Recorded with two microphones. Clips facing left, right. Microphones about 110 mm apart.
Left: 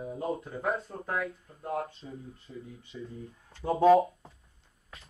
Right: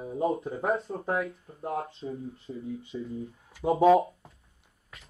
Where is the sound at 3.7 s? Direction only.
Centre (ahead or behind).